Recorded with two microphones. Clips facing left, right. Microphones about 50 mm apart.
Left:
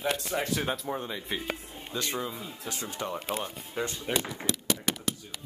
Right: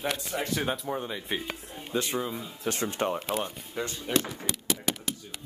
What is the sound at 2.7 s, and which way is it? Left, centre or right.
Speech, right.